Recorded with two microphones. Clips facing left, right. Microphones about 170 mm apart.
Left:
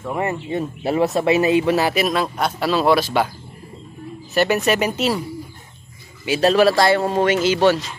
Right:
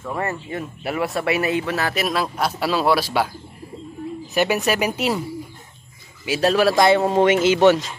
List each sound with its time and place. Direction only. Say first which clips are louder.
0.0 s speech: left 3 dB; 15° left (ahead or behind)
2.0 s a man's voice: left 2 dB; 5° right (ahead or behind)
4.4 s speech: left 2 dB; 5° right (ahead or behind)
6.2 s a man's voice: left 3 dB; 5° right (ahead or behind)
6.7 s speech: right 1 dB; 20° right (ahead or behind)